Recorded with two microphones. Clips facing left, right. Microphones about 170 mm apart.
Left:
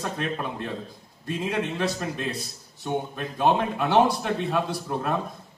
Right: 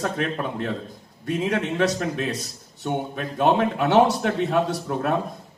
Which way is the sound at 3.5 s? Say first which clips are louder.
Right 3 dB; 70° right (ahead or behind).